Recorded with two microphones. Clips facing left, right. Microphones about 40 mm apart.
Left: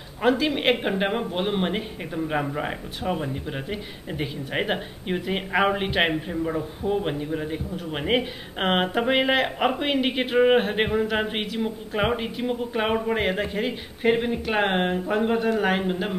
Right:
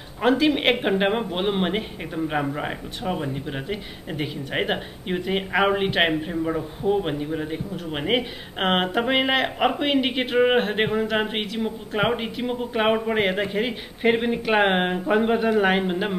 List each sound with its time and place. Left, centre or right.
0.2 s speech: centre